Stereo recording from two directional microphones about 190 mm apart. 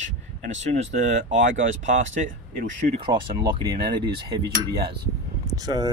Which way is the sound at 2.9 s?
25° right (ahead or behind).